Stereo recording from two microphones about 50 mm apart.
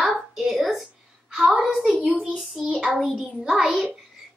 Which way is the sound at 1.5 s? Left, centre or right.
Centre.